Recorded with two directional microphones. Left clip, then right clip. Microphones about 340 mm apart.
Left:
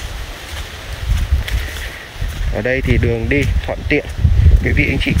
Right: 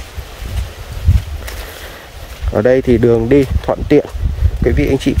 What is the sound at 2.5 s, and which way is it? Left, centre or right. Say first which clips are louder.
Speech: right 7 dB; right.